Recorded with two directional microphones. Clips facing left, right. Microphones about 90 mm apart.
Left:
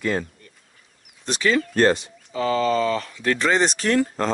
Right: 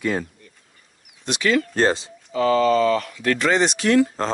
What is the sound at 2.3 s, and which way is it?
Speech, 40° right (ahead or behind).